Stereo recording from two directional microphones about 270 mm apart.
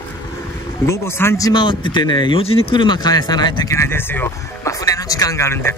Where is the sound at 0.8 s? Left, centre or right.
Centre.